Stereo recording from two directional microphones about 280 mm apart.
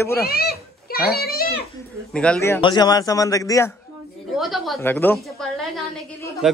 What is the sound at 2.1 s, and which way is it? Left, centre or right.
A man's voice, centre.